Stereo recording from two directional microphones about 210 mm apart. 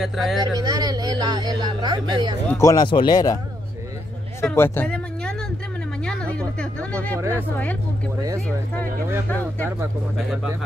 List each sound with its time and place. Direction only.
0.0 s speech: centre (ahead or behind)
0.5 s speech: 20° right (ahead or behind)
2.5 s speech: 15° left (ahead or behind)
4.4 s a sound: 10° left (ahead or behind)
6.0 s speech: 5° left (ahead or behind)
7.2 s speech: 15° right (ahead or behind)
10.1 s speech: centre (ahead or behind)